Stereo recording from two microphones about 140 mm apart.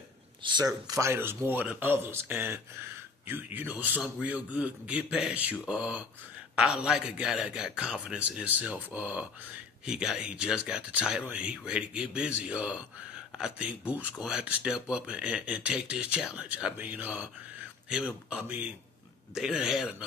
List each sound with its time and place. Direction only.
0.4 s speech: 35° right (ahead or behind)
0.8 s a man's voice: 20° right (ahead or behind); by 20.1 s 5° right (ahead or behind)